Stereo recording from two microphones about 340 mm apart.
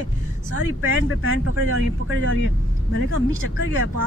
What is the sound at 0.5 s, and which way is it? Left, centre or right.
Speech, right.